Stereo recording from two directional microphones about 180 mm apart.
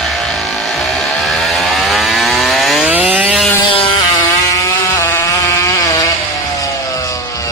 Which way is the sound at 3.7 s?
30° left (ahead or behind).